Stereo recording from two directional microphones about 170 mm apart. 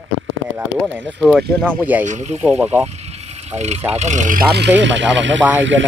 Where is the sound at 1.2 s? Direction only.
5° right (ahead or behind).